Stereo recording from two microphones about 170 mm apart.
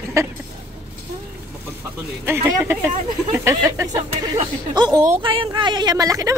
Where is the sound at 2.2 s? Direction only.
15° right (ahead or behind).